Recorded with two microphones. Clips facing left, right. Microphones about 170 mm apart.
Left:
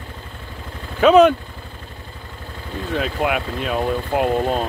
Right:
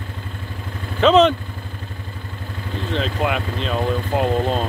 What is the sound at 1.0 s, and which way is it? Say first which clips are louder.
Speech: left 2 dB; 10° left (ahead or behind).